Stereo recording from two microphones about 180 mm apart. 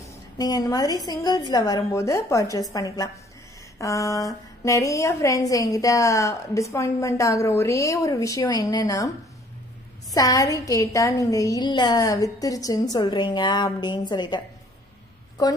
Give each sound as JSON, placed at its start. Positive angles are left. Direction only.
{"t": 0.0, "sound": "a sound", "side_deg": 20}
{"t": 1.0, "sound": "a woman's voice", "side_deg": 20}
{"t": 10.1, "sound": "a woman's voice", "side_deg": 20}